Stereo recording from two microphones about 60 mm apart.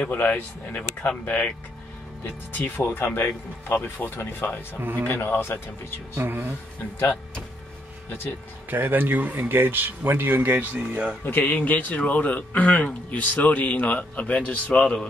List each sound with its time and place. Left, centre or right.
0.1 s a man's voice: left
2.5 s speech: left
6.1 s speech: right
8.6 s speech: right
11.2 s a man's voice: left; by 15.0 s centre